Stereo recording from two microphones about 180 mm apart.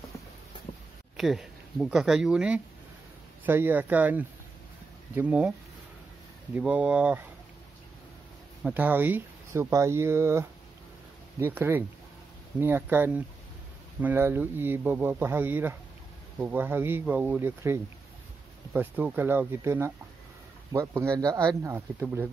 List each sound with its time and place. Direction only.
1.1 s speech: centre (ahead or behind)
6.5 s speech: 10° right (ahead or behind)
8.6 s speech: 10° right (ahead or behind)